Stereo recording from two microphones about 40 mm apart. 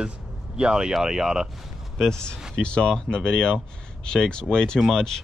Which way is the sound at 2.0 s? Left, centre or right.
Centre.